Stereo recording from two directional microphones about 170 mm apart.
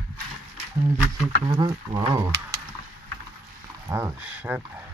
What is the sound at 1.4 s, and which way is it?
Speech, 30° right (ahead or behind).